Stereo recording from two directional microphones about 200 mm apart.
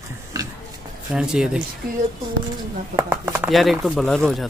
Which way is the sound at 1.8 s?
50° right (ahead or behind).